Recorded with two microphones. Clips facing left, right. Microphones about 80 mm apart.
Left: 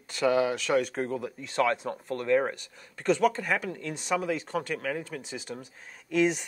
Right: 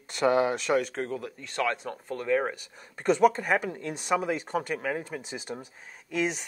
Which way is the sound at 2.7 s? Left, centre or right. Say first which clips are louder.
Right 3 dB; right.